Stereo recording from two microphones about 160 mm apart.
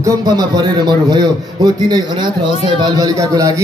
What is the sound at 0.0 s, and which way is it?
A man's voice, 20° right (ahead or behind).